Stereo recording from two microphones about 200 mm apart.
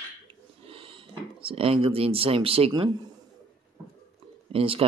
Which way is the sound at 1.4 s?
30° right (ahead or behind).